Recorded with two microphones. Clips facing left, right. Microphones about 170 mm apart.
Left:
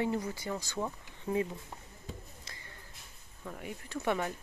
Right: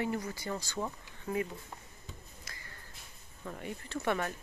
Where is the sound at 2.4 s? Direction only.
25° left (ahead or behind).